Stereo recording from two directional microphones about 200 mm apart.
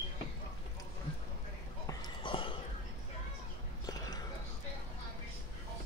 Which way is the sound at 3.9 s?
20° left (ahead or behind).